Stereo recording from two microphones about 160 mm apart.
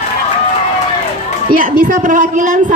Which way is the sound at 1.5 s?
60° right (ahead or behind).